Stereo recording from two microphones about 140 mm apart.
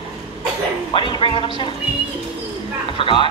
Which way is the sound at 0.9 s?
35° left (ahead or behind).